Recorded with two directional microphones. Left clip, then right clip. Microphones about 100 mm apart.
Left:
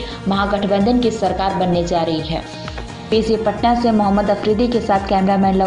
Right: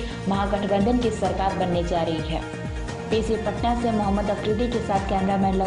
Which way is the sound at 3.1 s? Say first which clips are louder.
Left 8 dB; 15° left (ahead or behind).